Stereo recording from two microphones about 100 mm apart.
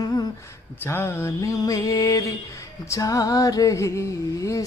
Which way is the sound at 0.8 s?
25° left (ahead or behind).